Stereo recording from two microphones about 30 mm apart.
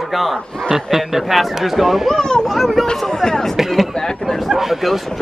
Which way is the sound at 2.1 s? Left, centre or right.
Left.